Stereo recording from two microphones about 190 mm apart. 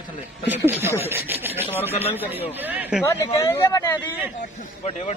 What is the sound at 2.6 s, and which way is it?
Chatter, 10° right (ahead or behind).